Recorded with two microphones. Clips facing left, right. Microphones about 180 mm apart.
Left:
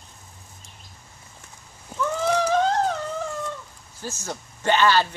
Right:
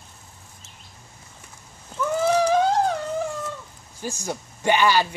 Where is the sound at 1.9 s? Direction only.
10° left (ahead or behind).